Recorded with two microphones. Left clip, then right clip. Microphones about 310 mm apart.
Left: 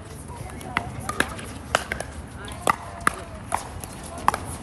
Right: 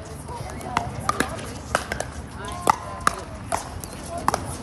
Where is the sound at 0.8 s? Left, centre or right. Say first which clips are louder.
Right 2 dB; centre.